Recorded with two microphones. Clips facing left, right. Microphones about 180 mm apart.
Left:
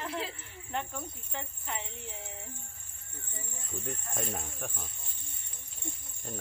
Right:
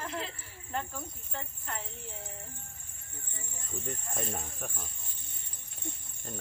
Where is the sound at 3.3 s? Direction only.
20° left (ahead or behind).